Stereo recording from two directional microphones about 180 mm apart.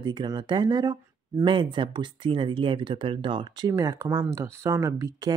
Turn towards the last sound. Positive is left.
turn(degrees=-20)  # may be behind; listen again after turning